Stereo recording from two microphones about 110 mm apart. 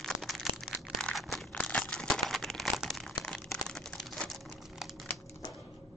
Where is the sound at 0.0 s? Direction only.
Centre (ahead or behind).